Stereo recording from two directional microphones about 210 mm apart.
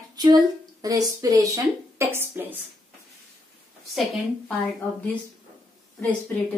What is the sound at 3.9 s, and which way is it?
Speech, centre (ahead or behind).